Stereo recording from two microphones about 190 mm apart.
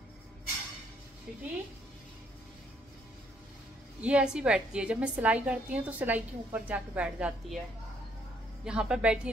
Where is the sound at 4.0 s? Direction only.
5° right (ahead or behind).